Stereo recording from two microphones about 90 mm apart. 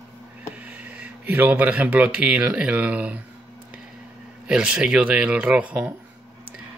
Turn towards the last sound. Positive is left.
turn(degrees=-15)  # may be behind; listen again after turning